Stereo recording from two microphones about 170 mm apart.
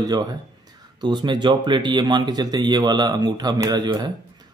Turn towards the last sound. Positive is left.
turn(degrees=-25)  # may be behind; listen again after turning